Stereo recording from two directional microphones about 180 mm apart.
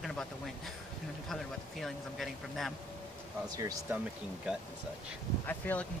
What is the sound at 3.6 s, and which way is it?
Speech, 15° right (ahead or behind).